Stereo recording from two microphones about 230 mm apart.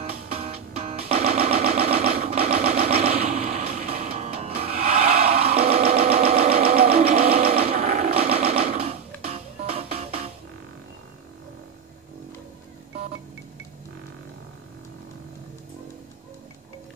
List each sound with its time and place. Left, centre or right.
0.1 s music: right
2.2 s a sound: right
8.7 s music: right